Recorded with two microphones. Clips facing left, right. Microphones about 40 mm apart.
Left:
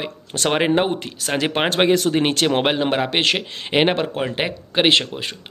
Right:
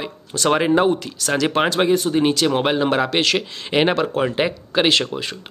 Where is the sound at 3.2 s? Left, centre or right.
Left.